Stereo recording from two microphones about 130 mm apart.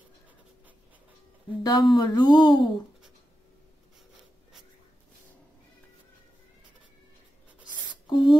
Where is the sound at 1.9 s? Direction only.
30° left (ahead or behind).